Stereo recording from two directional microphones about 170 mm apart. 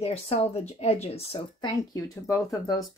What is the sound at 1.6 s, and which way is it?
Speech, 20° left (ahead or behind).